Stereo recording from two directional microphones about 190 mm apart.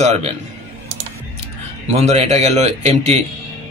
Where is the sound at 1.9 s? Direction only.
35° right (ahead or behind).